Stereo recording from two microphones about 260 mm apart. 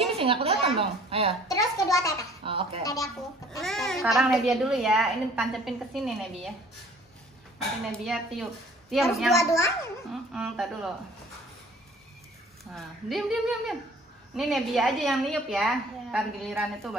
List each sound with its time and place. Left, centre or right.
0.1 s a woman's voice: right
1.5 s a child's voice: centre
2.4 s a woman's voice: right
2.8 s a child's voice: centre
3.6 s a child's voice: centre
8.0 s a child's voice: centre
9.4 s a child's voice: centre
10.3 s a child's voice: centre
12.7 s a child's voice: centre